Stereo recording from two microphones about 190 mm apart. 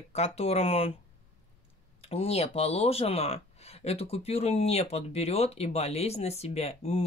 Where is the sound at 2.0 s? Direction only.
30° left (ahead or behind).